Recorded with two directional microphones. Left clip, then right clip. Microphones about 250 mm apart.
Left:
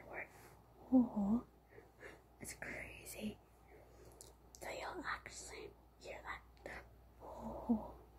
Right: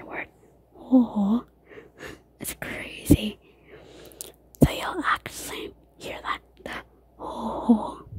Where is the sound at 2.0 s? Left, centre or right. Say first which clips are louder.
Right 15 dB; right.